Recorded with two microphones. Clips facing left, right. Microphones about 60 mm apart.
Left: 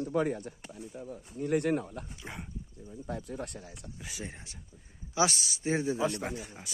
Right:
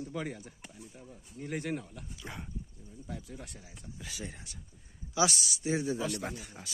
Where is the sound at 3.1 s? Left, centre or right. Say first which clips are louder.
Left 6 dB; left.